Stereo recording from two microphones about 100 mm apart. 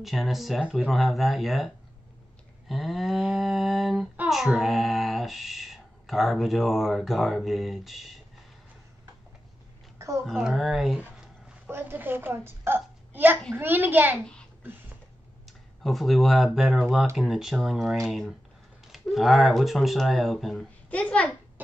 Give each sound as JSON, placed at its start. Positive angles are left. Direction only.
{"t": 0.0, "sound": "speech", "side_deg": 0}
{"t": 2.7, "sound": "speech", "side_deg": 0}
{"t": 9.9, "sound": "a sound", "side_deg": -30}
{"t": 10.2, "sound": "speech", "side_deg": -5}
{"t": 11.6, "sound": "a child's voice", "side_deg": -20}
{"t": 15.8, "sound": "speech", "side_deg": 0}
{"t": 20.9, "sound": "a child's voice", "side_deg": 10}